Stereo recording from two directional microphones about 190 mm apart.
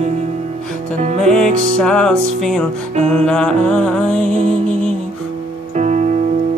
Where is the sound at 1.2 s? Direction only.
5° left (ahead or behind).